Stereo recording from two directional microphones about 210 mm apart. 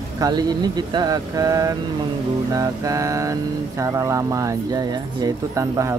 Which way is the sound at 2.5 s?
15° right (ahead or behind).